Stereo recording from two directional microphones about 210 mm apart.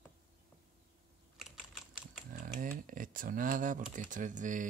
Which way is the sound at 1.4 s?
Centre (ahead or behind).